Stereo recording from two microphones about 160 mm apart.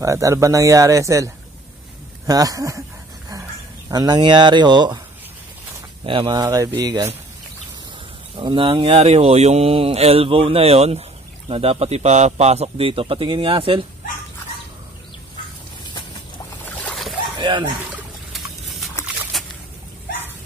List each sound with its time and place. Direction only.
0.0 s speech: 20° right (ahead or behind)
3.9 s speech: 25° right (ahead or behind)
6.0 s speech: 30° right (ahead or behind)
8.4 s speech: 30° right (ahead or behind)
16.7 s boat: 5° left (ahead or behind)
17.4 s a sound: 30° right (ahead or behind)
19.3 s a sound: centre (ahead or behind)